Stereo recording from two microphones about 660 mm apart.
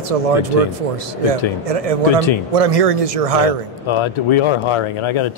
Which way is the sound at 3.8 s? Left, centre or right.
Left.